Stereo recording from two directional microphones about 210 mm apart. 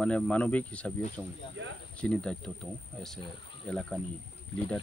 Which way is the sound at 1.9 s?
5° left (ahead or behind).